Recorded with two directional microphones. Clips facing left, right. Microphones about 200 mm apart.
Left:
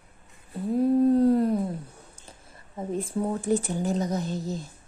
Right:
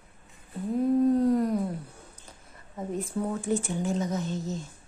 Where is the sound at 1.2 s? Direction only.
30° left (ahead or behind).